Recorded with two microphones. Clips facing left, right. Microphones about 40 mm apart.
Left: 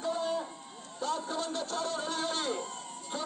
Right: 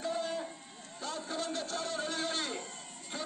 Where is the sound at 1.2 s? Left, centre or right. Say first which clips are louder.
Left 2 dB; centre.